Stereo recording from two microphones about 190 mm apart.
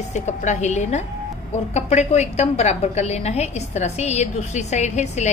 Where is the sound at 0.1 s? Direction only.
40° left (ahead or behind).